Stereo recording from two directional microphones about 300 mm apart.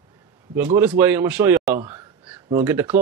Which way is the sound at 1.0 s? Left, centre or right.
Centre.